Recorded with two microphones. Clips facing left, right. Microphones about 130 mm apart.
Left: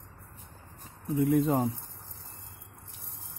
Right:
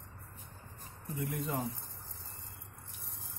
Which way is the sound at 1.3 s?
90° left.